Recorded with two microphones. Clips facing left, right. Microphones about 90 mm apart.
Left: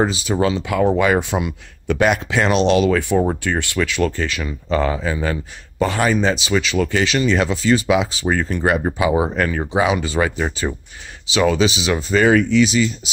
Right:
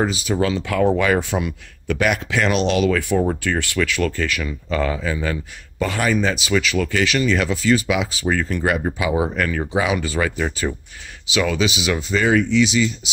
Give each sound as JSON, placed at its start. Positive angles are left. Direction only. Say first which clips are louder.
{"t": 0.0, "sound": "speech", "louder": "left 2 dB", "side_deg": 30}
{"t": 12.1, "sound": "speech", "louder": "left 4 dB", "side_deg": 50}